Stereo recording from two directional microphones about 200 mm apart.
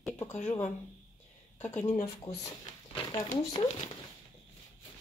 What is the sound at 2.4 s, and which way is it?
Speech, 20° left (ahead or behind).